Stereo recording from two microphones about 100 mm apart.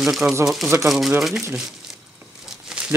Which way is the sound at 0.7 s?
5° right (ahead or behind).